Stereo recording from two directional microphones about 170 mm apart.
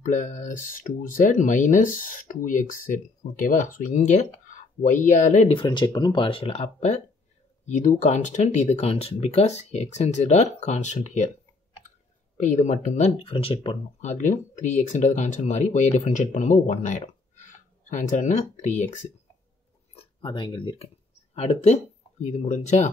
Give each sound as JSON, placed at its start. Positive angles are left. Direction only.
{"t": 0.0, "sound": "speech", "side_deg": 45}
{"t": 5.5, "sound": "speech", "side_deg": 25}
{"t": 12.4, "sound": "speech", "side_deg": 45}
{"t": 14.1, "sound": "speech", "side_deg": 45}
{"t": 20.0, "sound": "speech", "side_deg": 30}
{"t": 21.4, "sound": "speech", "side_deg": 40}